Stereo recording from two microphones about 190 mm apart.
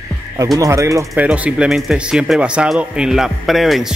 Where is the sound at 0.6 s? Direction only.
15° right (ahead or behind); by 3.9 s centre (ahead or behind).